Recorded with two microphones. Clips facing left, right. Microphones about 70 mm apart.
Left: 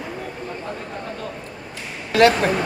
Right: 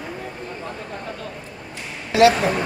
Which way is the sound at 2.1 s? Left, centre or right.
Left.